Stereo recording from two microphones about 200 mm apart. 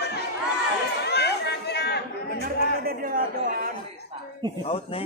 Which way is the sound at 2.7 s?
50° right (ahead or behind).